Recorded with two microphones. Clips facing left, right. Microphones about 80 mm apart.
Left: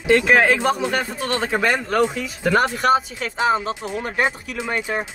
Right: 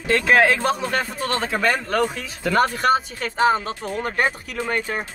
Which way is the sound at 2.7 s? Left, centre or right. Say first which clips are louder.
Left 1 dB; centre.